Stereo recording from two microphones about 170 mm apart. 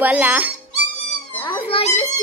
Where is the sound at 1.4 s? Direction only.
30° left (ahead or behind).